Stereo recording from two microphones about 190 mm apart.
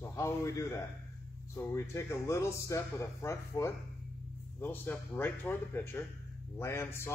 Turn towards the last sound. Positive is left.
turn(degrees=10)  # may be behind; listen again after turning